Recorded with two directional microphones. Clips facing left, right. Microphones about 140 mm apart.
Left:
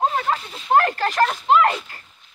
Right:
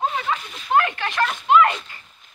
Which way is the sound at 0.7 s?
40° left (ahead or behind).